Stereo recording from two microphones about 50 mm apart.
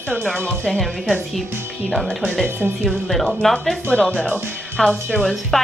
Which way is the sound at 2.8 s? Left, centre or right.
Centre.